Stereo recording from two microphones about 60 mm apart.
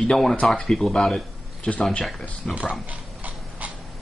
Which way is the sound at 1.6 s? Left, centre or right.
Left.